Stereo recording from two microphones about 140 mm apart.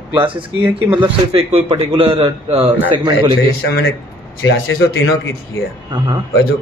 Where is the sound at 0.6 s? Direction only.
10° right (ahead or behind).